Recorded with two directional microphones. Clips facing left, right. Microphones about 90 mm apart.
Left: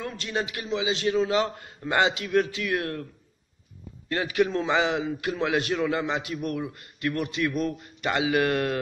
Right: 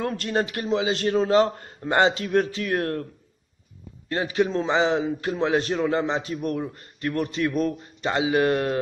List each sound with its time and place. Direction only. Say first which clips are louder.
0.0 s a man's voice: right 5 dB; 50° right (ahead or behind)
4.1 s a man's voice: right 1 dB; 30° right (ahead or behind)